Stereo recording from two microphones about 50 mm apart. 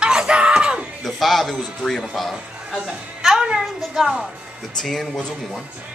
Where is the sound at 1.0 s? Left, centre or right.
Centre.